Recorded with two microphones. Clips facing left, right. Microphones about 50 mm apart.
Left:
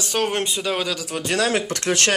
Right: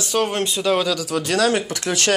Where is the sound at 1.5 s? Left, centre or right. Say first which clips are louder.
Right 1 dB; left.